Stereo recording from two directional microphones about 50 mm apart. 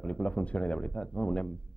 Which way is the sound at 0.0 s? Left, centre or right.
Left.